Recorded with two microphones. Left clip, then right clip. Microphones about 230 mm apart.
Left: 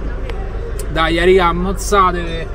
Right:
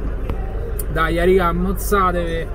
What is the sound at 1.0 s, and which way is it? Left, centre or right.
Speech, left.